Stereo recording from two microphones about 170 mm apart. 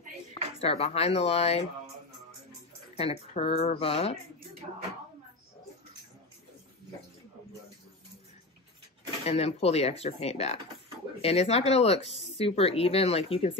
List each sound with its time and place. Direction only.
0.6 s speech: 35° left (ahead or behind)
3.0 s speech: 35° left (ahead or behind)
9.2 s speech: 35° left (ahead or behind)